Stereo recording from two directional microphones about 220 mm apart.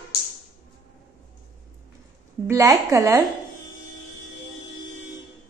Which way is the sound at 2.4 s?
15° right (ahead or behind).